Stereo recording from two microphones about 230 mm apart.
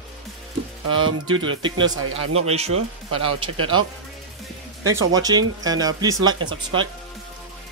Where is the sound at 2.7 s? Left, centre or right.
Right.